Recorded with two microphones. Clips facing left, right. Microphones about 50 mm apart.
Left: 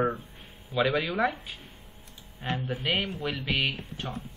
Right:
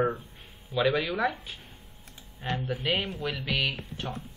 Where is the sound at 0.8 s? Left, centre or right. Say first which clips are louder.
Even; centre.